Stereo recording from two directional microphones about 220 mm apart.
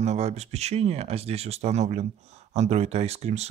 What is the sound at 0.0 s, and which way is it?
Speech, 30° right (ahead or behind).